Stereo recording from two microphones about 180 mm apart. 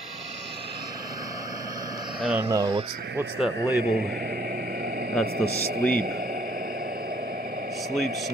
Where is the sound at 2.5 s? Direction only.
20° right (ahead or behind).